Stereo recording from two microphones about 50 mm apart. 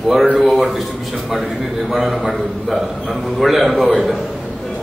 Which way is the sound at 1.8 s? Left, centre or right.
Centre.